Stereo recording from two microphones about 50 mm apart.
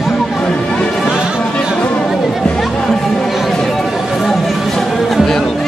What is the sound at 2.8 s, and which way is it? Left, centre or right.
Music, centre.